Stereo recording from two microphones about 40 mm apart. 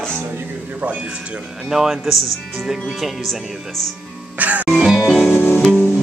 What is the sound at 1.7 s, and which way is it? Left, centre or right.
A man's voice, centre.